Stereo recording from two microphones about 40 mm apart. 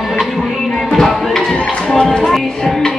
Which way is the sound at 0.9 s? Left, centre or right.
Centre.